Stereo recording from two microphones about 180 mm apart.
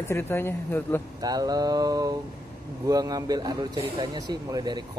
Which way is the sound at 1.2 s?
20° right (ahead or behind).